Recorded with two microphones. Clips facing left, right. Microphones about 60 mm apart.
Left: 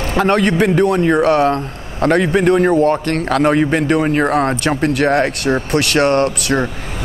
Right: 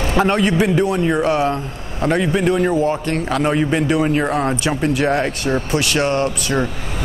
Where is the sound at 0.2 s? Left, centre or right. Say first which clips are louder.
Left 3 dB; left.